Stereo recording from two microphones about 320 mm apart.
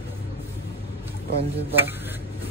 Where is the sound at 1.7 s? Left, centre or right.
Centre.